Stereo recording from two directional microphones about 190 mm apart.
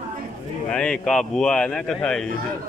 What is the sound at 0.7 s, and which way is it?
Speech, 5° left (ahead or behind).